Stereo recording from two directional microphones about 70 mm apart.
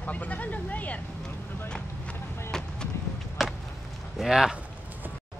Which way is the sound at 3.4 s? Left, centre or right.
Centre.